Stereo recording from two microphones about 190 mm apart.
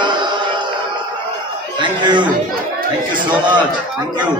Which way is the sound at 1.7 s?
25° right (ahead or behind).